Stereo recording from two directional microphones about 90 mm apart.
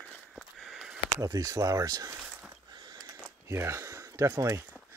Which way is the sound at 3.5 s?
30° right (ahead or behind).